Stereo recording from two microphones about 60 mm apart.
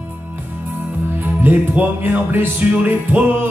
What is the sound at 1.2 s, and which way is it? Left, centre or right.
Music, right.